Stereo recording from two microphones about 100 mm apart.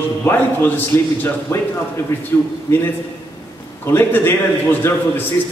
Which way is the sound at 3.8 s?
25° left (ahead or behind).